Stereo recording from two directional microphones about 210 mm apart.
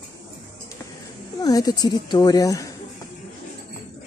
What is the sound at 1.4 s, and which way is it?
Speech, 15° left (ahead or behind).